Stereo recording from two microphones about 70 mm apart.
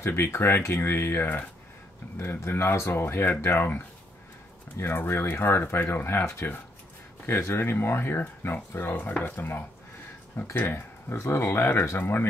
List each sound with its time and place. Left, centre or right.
0.0 s speech: left
4.7 s speech: left